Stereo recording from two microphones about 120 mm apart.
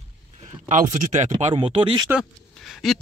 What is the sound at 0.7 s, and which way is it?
Speech, 90° right.